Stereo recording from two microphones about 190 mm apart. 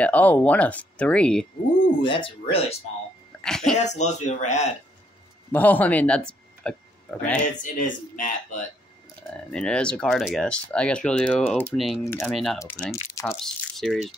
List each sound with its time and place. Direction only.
0.0 s speech: 10° left (ahead or behind)
2.0 s speech: 25° left (ahead or behind)
3.4 s speech: 5° left (ahead or behind)
3.7 s speech: 35° left (ahead or behind)
5.5 s speech: 10° left (ahead or behind)
7.6 s speech: 45° left (ahead or behind)
9.5 s speech: 5° left (ahead or behind)